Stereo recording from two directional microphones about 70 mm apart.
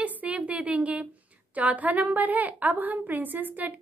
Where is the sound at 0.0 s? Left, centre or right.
Centre.